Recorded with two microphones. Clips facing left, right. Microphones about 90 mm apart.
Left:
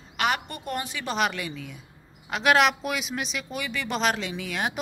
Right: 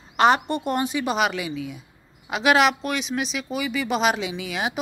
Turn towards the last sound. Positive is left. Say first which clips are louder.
# right 2 dB
turn(degrees=-5)  # may be behind; listen again after turning